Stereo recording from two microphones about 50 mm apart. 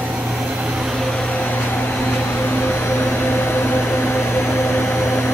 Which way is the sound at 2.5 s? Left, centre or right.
Left.